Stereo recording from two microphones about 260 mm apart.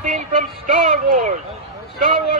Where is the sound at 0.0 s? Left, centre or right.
Right.